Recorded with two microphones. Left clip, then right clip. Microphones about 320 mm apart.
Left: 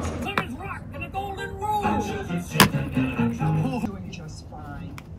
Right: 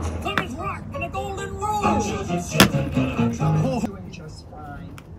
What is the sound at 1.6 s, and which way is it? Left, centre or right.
Music, right.